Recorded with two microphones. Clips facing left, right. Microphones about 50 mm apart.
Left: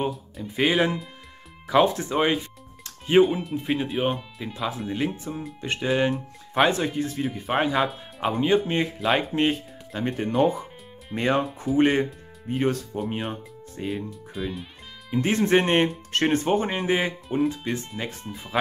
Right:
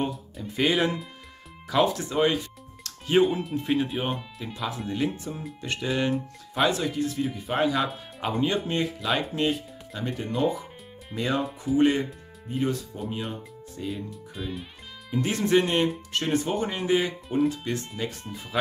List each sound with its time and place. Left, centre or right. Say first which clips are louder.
0.6 s speech: left 2 dB; centre
1.7 s speech: left 4 dB; left
3.2 s speech: left 3 dB; centre; by 6.1 s left
6.5 s speech: left 3 dB; left
12.4 s speech: left 3 dB; left
14.3 s speech: left 4 dB; centre
15.0 s speech: left 3 dB; left
17.0 s speech: left 1 dB; centre